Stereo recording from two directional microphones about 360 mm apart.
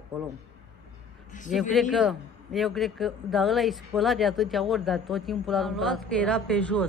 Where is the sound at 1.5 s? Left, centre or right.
Centre.